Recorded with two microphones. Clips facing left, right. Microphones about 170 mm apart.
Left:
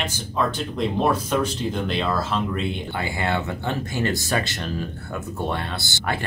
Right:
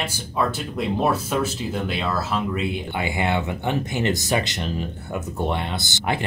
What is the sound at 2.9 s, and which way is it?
Speech, 20° right (ahead or behind).